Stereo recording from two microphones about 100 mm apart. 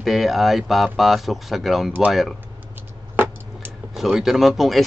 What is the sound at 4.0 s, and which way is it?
Speech, 5° right (ahead or behind).